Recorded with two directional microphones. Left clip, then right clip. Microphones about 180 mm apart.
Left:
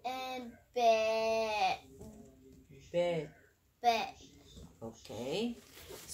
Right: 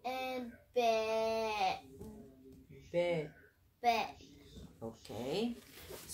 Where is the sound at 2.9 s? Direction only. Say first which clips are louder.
Left 1 dB; 10° right (ahead or behind).